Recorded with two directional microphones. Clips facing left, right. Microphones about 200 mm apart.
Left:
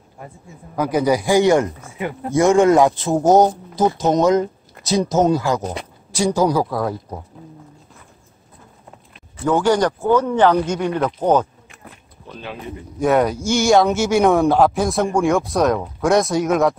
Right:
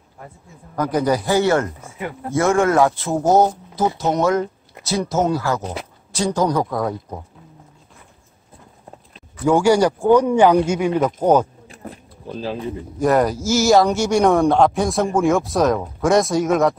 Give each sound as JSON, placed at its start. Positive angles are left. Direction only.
{"t": 0.7, "sound": "speech", "side_deg": 10}
{"t": 9.4, "sound": "speech", "side_deg": -10}
{"t": 11.7, "sound": "a sound", "side_deg": -35}
{"t": 13.0, "sound": "speech", "side_deg": 0}